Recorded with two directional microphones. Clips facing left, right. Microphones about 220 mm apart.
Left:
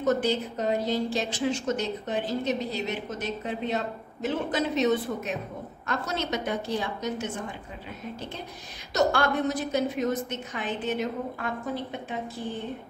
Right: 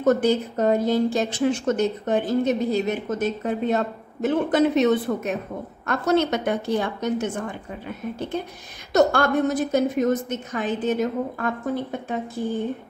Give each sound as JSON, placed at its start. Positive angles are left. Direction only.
{"t": 0.0, "sound": "a woman's voice", "side_deg": -50}
{"t": 8.9, "sound": "a woman's voice", "side_deg": -45}